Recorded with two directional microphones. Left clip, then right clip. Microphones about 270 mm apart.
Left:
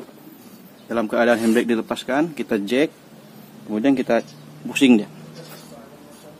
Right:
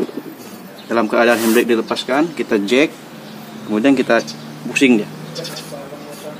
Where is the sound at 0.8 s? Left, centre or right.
Centre.